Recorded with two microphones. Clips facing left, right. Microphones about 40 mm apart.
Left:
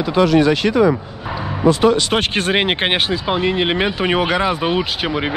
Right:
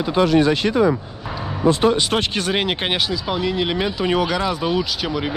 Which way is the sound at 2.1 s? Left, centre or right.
Left.